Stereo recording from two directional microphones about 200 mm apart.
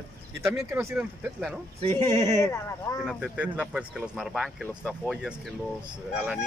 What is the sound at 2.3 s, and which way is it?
Speech, 15° left (ahead or behind).